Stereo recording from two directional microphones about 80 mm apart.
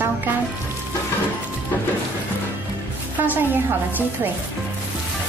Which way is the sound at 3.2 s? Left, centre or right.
Right.